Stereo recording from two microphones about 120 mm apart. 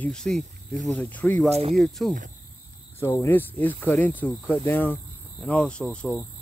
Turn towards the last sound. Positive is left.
turn(degrees=10)  # may be behind; listen again after turning